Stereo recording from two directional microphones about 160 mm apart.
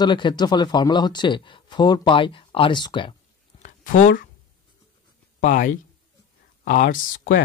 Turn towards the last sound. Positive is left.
turn(degrees=60)  # may be behind; listen again after turning